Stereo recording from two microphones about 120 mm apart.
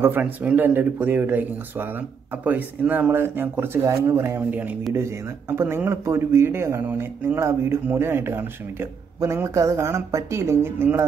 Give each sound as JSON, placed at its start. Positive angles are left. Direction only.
{"t": 0.0, "sound": "speech", "side_deg": -15}